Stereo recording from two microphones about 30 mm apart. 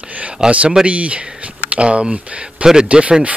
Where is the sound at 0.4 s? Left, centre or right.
Right.